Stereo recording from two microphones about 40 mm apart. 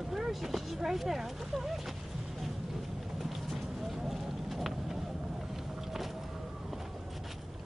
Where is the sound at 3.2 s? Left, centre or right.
Centre.